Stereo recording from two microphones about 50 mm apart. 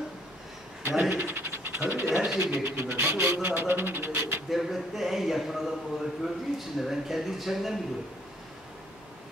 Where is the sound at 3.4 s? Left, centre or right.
Right.